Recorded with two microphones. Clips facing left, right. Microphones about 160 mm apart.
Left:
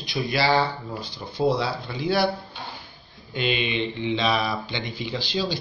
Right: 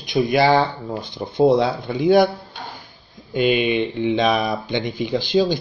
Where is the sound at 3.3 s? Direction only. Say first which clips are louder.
Right 8 dB; 50° right (ahead or behind).